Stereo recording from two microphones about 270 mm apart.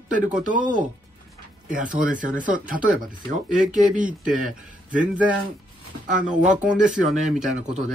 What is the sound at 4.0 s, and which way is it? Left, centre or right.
Speech, right.